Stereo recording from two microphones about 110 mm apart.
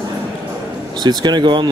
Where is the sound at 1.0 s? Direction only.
40° right (ahead or behind).